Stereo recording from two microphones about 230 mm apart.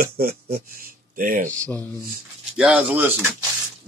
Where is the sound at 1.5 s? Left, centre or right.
Centre.